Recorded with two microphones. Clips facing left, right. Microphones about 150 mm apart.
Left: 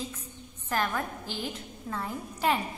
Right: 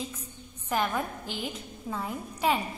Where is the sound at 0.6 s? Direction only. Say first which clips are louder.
Right 1 dB; 15° right (ahead or behind).